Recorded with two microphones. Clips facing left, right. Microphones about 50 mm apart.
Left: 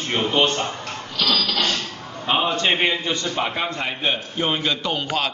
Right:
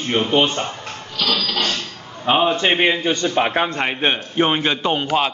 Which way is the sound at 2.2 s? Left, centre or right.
Centre.